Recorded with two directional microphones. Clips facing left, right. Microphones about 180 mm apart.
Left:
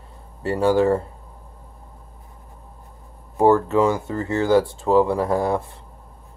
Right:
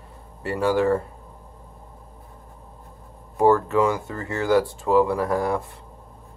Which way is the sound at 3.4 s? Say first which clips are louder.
Left 2 dB; 25° left (ahead or behind).